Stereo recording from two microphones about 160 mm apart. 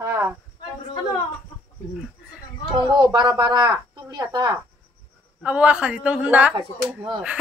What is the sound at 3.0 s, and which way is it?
A woman's voice, 25° right (ahead or behind).